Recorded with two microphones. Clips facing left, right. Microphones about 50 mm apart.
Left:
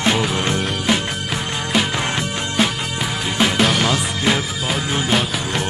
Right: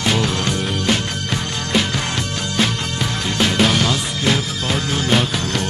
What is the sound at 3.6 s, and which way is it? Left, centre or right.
Music, centre.